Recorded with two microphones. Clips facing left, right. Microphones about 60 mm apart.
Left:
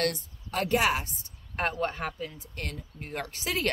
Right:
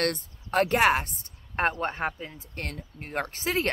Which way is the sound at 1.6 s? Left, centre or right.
Right.